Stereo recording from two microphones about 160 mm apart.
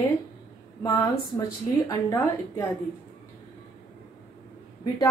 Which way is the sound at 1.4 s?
20° left (ahead or behind).